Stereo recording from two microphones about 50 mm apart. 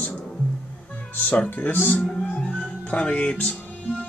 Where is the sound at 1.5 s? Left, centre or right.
Left.